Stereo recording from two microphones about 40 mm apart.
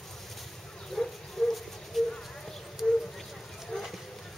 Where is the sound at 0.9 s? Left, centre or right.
Centre.